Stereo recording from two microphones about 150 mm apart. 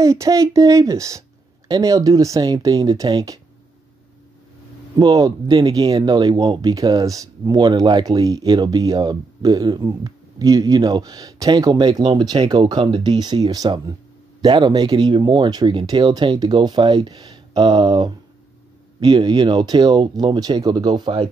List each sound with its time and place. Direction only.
0.0 s speech: 20° right (ahead or behind)
4.9 s speech: 25° right (ahead or behind)